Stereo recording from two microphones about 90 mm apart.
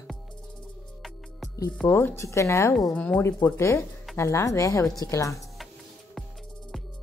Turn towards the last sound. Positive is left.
turn(degrees=35)  # may be behind; listen again after turning